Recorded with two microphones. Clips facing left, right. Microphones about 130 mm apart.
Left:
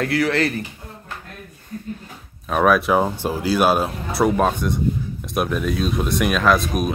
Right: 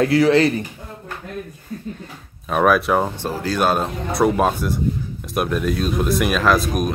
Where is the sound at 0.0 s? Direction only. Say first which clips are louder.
Right 5 dB; 20° right (ahead or behind).